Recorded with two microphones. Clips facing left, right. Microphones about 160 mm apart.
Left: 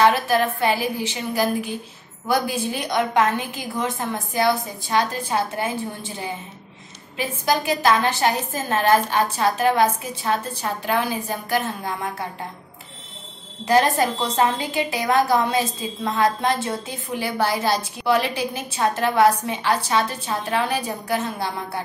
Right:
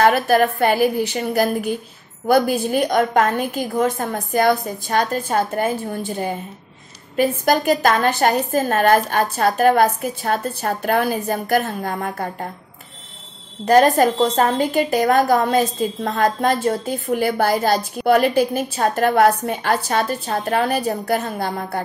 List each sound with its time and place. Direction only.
0.0 s a woman's voice: 50° right (ahead or behind)
13.7 s a woman's voice: 50° right (ahead or behind)